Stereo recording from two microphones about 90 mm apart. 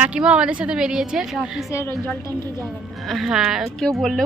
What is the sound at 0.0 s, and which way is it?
Speech, 15° right (ahead or behind).